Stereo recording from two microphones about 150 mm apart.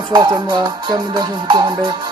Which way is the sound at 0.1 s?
25° right (ahead or behind).